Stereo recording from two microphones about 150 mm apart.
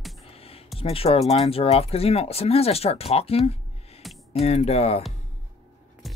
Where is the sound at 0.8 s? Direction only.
40° left (ahead or behind).